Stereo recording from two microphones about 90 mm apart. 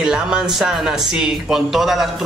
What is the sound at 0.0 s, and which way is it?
Speech, 10° right (ahead or behind).